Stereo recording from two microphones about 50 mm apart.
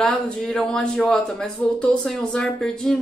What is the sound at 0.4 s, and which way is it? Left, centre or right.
Speech, centre.